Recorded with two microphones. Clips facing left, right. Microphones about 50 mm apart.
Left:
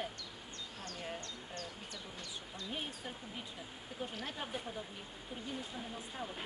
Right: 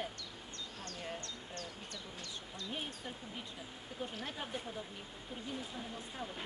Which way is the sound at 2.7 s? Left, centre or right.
Centre.